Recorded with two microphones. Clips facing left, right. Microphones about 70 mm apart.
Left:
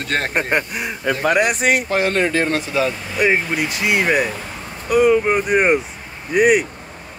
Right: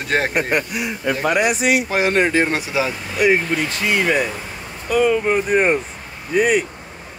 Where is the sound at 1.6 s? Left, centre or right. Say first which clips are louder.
Even; left.